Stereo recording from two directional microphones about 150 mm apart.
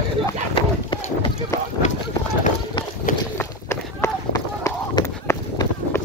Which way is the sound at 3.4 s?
20° left (ahead or behind).